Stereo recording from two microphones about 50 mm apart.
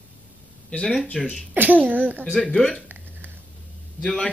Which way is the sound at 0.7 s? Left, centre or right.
Left.